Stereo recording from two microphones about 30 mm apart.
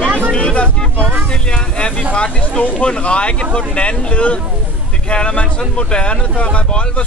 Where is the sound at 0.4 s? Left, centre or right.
Left.